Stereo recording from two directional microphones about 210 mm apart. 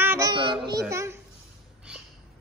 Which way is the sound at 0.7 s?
15° right (ahead or behind).